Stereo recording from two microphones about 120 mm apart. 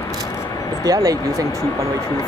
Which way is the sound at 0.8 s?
30° right (ahead or behind).